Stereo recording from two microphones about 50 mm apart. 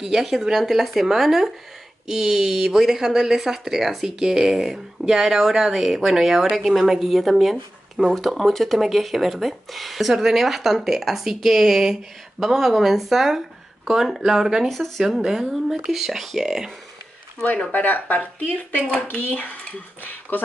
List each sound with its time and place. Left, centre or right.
0.0 s speech: centre
14.7 s speech: centre
15.1 s speech: centre
17.6 s speech: left